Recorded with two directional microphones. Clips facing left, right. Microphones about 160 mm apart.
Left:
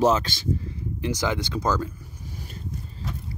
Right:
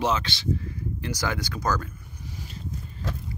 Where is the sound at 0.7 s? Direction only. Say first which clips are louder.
Left 4 dB; 20° left (ahead or behind).